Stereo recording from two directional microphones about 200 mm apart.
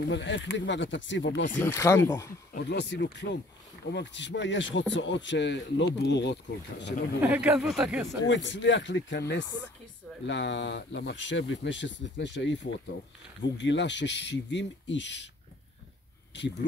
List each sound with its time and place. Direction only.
0.0 s speech: 65° left (ahead or behind)
1.5 s speech: 10° left (ahead or behind)
2.5 s speech: 60° left (ahead or behind)
7.2 s speech: 10° right (ahead or behind)
8.3 s speech: 65° left (ahead or behind)